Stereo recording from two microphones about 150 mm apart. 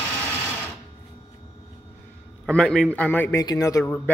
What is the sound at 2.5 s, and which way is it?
Speech, 5° left (ahead or behind).